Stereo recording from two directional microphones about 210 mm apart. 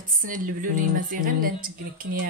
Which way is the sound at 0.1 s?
40° right (ahead or behind).